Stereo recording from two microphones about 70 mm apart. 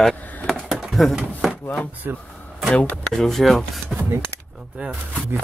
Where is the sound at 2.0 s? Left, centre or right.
Right.